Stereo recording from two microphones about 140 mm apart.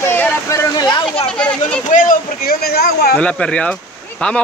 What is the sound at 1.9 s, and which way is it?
A man's voice, 70° left (ahead or behind).